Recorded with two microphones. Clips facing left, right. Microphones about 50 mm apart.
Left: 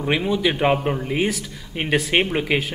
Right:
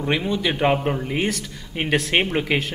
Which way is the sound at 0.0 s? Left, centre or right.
Centre.